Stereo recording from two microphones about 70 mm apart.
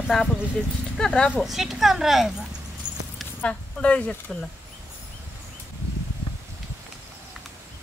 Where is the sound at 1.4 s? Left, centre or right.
Centre.